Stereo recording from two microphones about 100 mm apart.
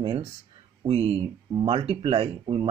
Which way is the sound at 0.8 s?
75° right (ahead or behind).